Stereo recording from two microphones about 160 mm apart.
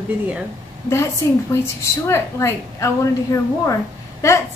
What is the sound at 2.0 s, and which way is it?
Speech, 15° left (ahead or behind).